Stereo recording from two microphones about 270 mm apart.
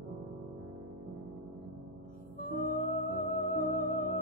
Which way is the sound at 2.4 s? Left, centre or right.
Left.